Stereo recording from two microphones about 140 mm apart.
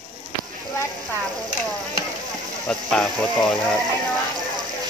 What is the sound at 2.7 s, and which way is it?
Speech, 5° left (ahead or behind).